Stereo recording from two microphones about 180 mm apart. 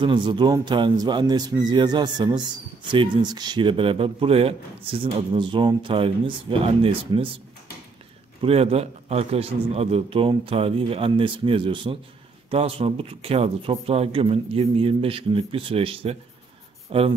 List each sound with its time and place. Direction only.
0.0 s speech: 25° right (ahead or behind)
8.4 s speech: 35° right (ahead or behind)